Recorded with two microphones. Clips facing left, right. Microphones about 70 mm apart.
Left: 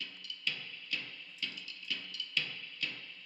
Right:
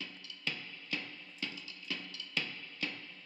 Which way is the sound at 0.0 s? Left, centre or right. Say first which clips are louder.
Even; right.